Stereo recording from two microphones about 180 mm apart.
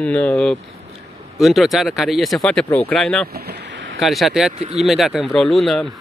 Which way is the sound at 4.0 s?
Centre (ahead or behind).